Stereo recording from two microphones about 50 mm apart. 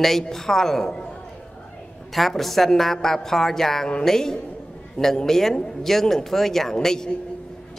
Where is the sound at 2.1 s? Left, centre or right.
Centre.